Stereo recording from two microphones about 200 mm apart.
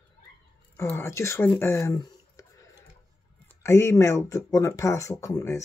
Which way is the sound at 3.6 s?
15° left (ahead or behind).